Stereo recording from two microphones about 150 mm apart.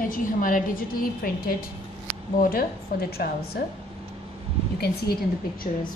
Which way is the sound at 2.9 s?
80° left.